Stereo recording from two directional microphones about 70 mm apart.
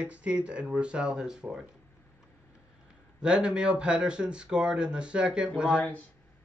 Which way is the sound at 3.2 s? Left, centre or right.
Centre.